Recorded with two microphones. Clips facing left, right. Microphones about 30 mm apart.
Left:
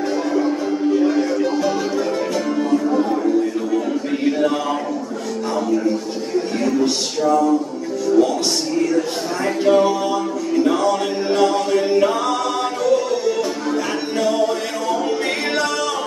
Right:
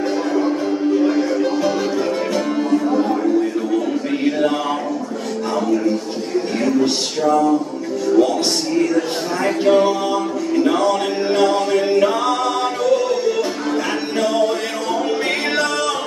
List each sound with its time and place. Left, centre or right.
1.3 s music: centre
4.3 s chant: centre
9.4 s mantra: centre
10.7 s a capella: right
14.2 s music: right